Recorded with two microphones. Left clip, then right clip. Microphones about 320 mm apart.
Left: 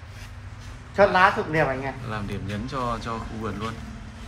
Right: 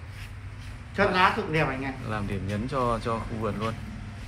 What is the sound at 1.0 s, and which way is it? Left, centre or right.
Speech, left.